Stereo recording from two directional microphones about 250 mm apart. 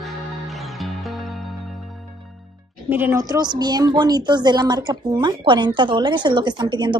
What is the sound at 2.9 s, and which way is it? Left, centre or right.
A woman's voice, centre.